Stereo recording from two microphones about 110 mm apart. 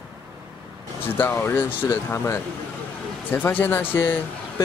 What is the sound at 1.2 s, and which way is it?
Speech, 20° left (ahead or behind).